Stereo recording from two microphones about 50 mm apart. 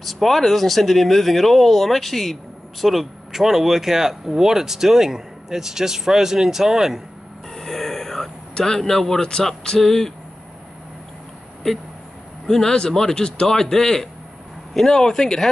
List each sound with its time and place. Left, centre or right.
0.0 s speech: centre
7.5 s a sound: centre
9.8 s a man's voice: centre
11.6 s a man's voice: centre